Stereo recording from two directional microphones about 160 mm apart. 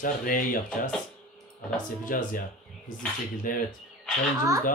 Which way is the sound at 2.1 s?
60° left (ahead or behind).